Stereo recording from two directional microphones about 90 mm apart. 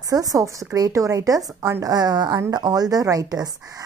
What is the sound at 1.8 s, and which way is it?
A woman's voice, 50° right (ahead or behind).